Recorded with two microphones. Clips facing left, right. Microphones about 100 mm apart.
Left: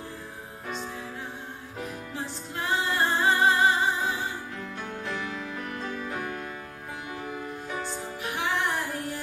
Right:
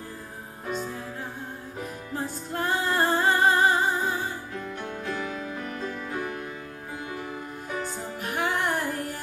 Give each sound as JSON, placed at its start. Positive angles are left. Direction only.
{"t": 2.1, "sound": "music", "side_deg": -45}
{"t": 8.2, "sound": "music", "side_deg": -45}